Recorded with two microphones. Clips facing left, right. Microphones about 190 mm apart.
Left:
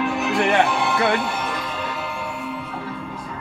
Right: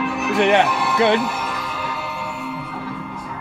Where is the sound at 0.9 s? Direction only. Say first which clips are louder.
Right 6 dB; 20° right (ahead or behind).